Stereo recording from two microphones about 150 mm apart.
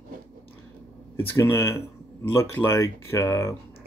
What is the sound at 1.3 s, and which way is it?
Speech, 15° left (ahead or behind).